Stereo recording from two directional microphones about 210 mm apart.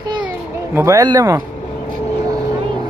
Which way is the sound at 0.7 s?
15° right (ahead or behind).